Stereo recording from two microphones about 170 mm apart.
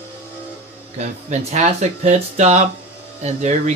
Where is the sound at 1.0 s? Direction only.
45° right (ahead or behind).